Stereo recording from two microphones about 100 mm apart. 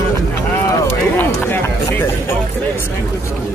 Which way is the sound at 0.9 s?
20° left (ahead or behind).